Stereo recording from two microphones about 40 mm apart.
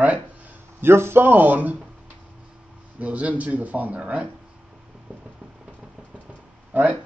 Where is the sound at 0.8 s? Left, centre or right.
Right.